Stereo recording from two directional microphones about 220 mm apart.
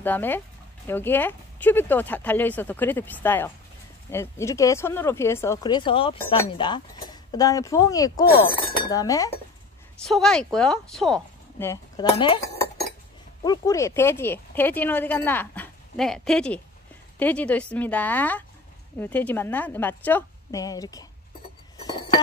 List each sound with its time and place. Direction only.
0.0 s speech: 10° left (ahead or behind)
10.0 s a woman's voice: centre (ahead or behind)
11.5 s speech: 15° left (ahead or behind)
13.4 s speech: 15° left (ahead or behind)
21.8 s chink: 20° left (ahead or behind)